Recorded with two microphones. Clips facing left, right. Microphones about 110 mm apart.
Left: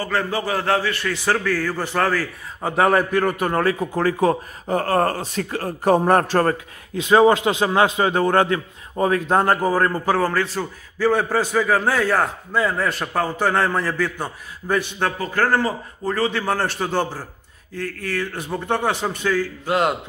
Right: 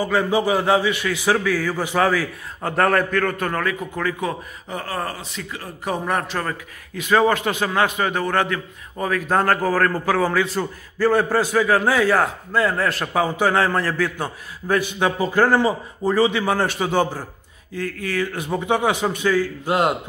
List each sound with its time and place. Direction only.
0.0 s a man's voice: 15° right (ahead or behind)
2.6 s a man's voice: 10° left (ahead or behind); by 6.5 s 40° left (ahead or behind)
7.0 s a man's voice: 25° left (ahead or behind)
9.9 s a man's voice: centre (ahead or behind)
15.2 s speech: 20° right (ahead or behind)
16.1 s a man's voice: 10° right (ahead or behind)